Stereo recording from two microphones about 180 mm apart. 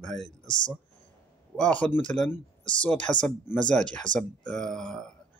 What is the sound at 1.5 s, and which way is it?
Speech, 5° left (ahead or behind).